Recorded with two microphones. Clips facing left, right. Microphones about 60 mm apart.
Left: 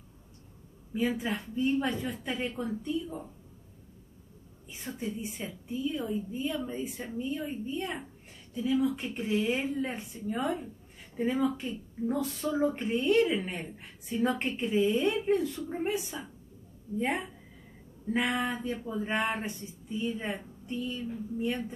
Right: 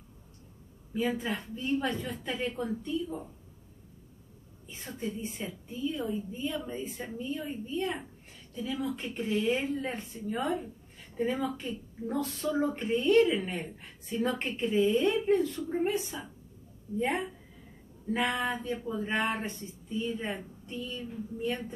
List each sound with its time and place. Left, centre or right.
0.9 s a woman's voice: centre
4.6 s a woman's voice: centre
18.1 s a woman's voice: centre